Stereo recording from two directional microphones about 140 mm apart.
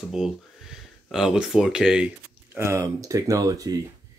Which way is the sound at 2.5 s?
20° right (ahead or behind).